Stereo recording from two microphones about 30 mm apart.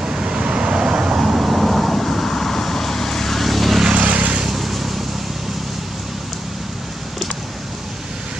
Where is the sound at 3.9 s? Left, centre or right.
Right.